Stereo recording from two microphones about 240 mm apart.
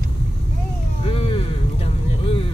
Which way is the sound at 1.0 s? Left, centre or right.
Left.